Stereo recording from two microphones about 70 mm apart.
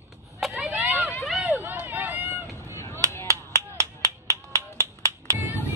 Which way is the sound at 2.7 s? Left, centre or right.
Left.